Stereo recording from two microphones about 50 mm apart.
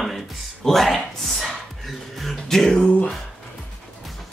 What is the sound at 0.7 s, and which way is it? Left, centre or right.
Speech, centre.